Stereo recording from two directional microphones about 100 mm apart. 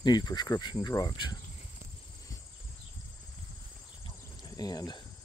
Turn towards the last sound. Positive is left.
turn(degrees=40)  # may be behind; listen again after turning